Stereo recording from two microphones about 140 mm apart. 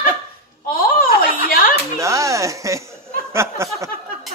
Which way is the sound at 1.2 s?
90° left.